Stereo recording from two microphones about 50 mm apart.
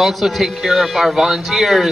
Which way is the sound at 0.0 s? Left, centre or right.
Centre.